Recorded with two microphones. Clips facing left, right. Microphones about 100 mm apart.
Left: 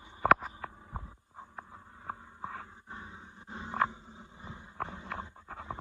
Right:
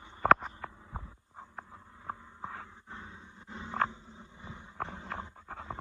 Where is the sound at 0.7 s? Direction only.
30° left (ahead or behind).